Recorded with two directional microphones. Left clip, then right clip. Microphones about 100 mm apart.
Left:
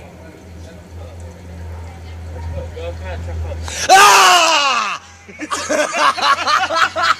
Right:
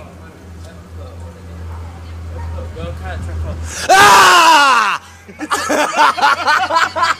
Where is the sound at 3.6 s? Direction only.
20° left (ahead or behind).